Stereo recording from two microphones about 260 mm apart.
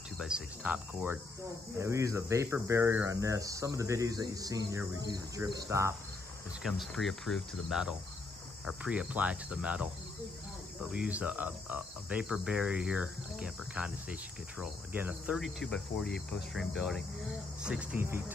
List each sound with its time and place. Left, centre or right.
0.2 s speech: centre
6.6 s speech: centre
10.9 s speech: centre
16.5 s speech: centre